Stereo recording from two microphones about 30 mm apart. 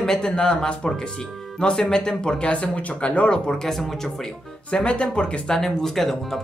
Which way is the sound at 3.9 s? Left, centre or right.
Centre.